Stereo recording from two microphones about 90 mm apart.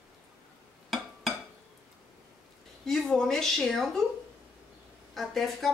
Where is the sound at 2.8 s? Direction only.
5° left (ahead or behind).